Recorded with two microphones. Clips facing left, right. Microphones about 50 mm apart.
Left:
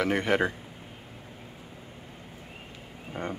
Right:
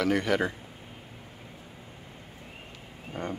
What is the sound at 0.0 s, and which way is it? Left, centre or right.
Speech, left.